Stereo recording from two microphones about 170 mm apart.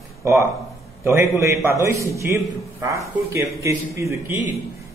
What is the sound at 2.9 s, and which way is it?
A man's voice, 20° right (ahead or behind).